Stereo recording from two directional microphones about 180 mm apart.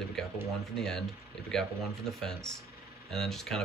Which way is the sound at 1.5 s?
Centre (ahead or behind).